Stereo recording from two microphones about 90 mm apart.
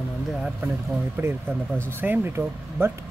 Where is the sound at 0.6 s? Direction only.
25° right (ahead or behind).